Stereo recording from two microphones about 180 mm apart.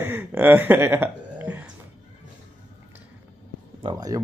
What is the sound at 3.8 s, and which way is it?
Speech, 25° right (ahead or behind).